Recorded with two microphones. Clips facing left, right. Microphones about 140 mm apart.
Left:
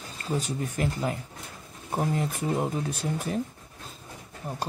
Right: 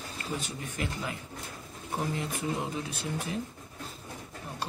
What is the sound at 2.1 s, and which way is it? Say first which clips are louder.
Speech: left 5 dB; 45° left (ahead or behind).